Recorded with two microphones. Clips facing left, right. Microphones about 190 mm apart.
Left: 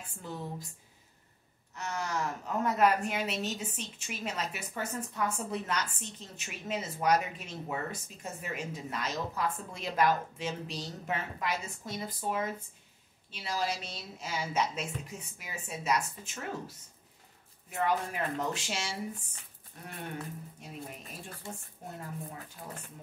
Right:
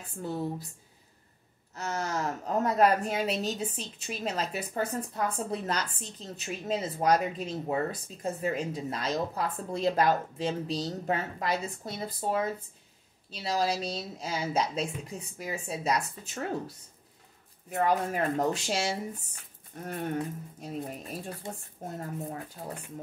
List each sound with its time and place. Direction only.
1.8 s speech: 40° right (ahead or behind)